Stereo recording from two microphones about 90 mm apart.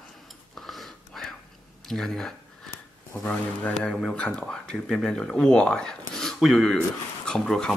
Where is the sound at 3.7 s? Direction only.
5° left (ahead or behind).